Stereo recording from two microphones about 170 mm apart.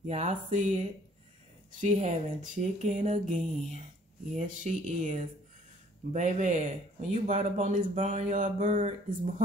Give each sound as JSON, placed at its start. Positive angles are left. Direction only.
{"t": 0.0, "sound": "speech", "side_deg": -40}